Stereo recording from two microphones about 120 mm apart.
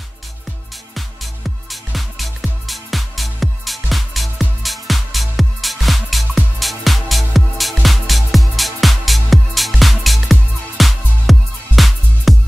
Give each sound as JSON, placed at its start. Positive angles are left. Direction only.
{"t": 0.9, "sound": "music", "side_deg": 0}